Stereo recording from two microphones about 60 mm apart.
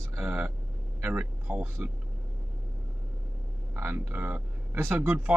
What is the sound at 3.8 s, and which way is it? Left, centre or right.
Speech, right.